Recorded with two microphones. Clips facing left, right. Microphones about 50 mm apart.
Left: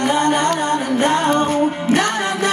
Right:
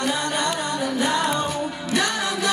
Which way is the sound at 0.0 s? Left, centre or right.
Left.